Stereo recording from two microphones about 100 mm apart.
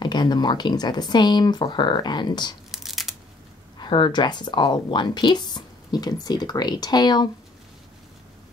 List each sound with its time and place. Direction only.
0.0 s speech: 50° left (ahead or behind)
2.7 s a sound: centre (ahead or behind)
3.7 s speech: 50° left (ahead or behind)